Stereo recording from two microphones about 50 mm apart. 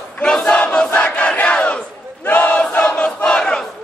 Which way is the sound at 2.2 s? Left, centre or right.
Left.